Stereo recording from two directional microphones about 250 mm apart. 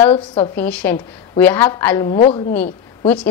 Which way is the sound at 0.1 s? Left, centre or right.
Left.